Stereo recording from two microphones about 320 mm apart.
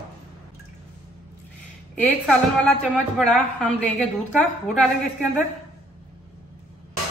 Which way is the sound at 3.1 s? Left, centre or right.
Centre.